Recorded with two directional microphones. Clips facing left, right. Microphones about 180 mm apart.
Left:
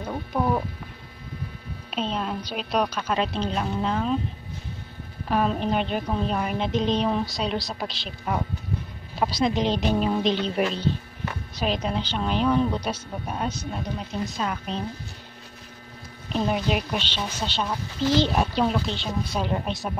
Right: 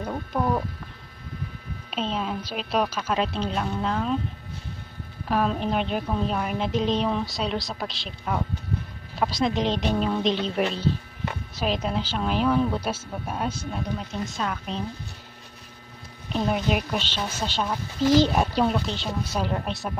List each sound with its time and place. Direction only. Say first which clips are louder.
0.1 s a sound: left 1 dB; centre (ahead or behind)
1.9 s a woman's voice: even; centre (ahead or behind)
5.3 s a woman's voice: left 1 dB; centre (ahead or behind)
16.3 s a woman's voice: even; centre (ahead or behind)